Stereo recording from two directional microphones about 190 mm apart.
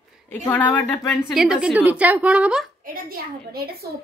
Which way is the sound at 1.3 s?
5° right (ahead or behind).